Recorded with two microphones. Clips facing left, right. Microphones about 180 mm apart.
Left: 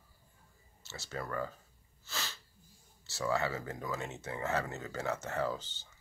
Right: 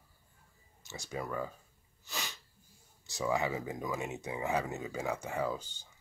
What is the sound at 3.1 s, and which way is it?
Speech, 15° right (ahead or behind).